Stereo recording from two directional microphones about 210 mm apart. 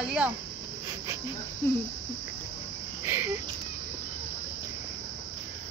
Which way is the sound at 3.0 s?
10° right (ahead or behind).